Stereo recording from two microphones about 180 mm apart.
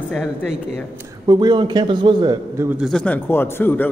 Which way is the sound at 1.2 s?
25° right (ahead or behind).